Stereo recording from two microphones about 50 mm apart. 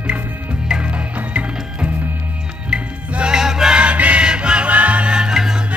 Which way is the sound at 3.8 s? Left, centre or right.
Right.